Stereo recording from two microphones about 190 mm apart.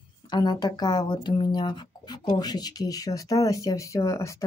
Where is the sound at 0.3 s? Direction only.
20° left (ahead or behind).